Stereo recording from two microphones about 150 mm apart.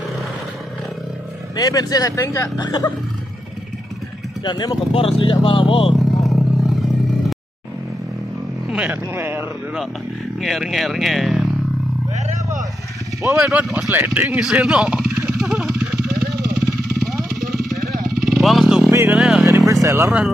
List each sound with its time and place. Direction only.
1.6 s speech: 25° left (ahead or behind)
4.5 s speech: 30° left (ahead or behind)
5.9 s vehicle: centre (ahead or behind)
8.6 s speech: 5° right (ahead or behind)
10.4 s speech: centre (ahead or behind)
13.3 s speech: 10° right (ahead or behind)
15.2 s vehicle: 5° right (ahead or behind)
16.2 s vehicle: 90° right
17.4 s vehicle: centre (ahead or behind)
18.9 s vehicle: 15° right (ahead or behind)
19.1 s vehicle: 5° right (ahead or behind)
19.7 s vehicle: 20° right (ahead or behind)
20.1 s speech: 5° right (ahead or behind)